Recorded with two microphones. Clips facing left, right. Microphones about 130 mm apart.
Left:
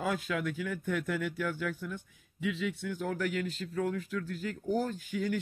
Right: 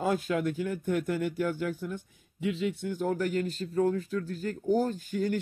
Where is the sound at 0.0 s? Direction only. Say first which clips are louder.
Right 5 dB; 30° right (ahead or behind).